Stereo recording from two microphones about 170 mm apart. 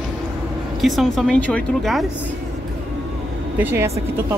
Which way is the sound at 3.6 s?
10° right (ahead or behind).